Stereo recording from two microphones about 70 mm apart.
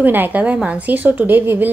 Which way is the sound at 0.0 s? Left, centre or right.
Right.